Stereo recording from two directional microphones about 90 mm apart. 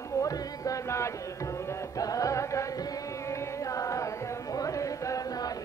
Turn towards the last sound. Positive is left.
turn(degrees=40)  # may be behind; listen again after turning